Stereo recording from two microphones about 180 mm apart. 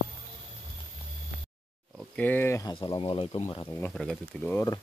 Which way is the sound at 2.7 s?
25° left (ahead or behind).